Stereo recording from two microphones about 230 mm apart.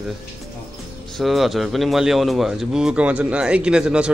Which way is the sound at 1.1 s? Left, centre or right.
Centre.